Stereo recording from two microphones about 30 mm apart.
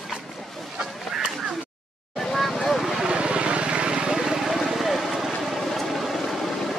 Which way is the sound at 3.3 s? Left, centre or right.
Right.